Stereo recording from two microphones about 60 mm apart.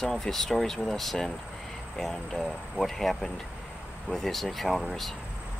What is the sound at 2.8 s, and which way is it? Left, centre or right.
Speech, centre.